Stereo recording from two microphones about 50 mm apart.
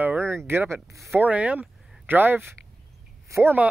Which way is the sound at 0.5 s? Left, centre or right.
Right.